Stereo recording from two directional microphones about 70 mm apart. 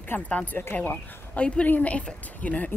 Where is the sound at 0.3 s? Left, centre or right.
Left.